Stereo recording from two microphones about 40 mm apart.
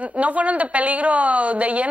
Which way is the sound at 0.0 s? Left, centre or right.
Right.